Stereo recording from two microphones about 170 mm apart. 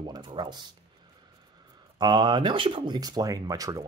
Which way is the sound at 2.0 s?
25° right (ahead or behind).